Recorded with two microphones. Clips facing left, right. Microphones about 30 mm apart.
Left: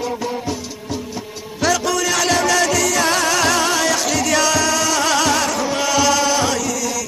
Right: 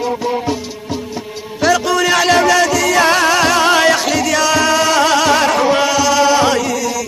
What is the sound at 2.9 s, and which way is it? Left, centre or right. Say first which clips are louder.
Music: right 6 dB; right.